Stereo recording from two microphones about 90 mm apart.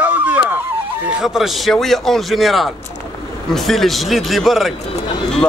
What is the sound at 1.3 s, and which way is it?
Speech, centre (ahead or behind).